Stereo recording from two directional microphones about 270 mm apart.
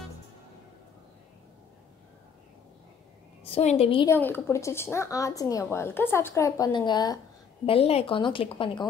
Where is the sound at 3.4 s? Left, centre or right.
Left.